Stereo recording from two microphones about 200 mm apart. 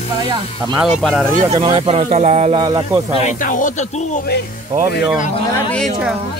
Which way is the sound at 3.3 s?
40° left (ahead or behind).